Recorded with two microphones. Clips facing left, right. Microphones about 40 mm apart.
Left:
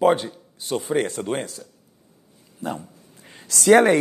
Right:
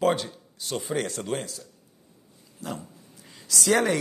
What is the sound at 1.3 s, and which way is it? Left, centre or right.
Speech, left.